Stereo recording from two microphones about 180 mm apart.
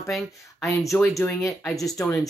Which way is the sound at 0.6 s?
15° left (ahead or behind).